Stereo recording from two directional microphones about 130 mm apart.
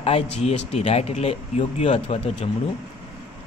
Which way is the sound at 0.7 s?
55° left (ahead or behind).